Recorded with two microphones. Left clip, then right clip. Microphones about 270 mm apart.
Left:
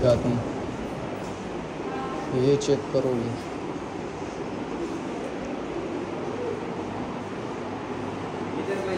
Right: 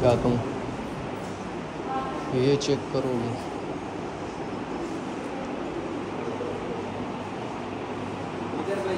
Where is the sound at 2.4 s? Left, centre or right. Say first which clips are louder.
Left 2 dB; centre.